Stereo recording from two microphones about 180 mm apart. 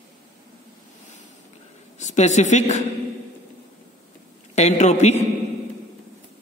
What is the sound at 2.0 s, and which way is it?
Speech, 40° left (ahead or behind).